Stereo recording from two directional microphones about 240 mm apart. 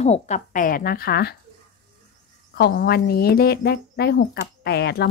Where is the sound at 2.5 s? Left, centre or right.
Left.